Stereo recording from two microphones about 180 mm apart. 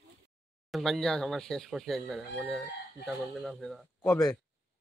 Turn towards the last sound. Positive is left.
turn(degrees=5)  # may be behind; listen again after turning